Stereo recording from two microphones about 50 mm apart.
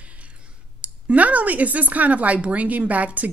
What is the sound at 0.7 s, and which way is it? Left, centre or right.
Speech, right.